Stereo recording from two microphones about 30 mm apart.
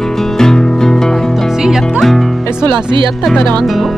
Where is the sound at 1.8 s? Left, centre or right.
Centre.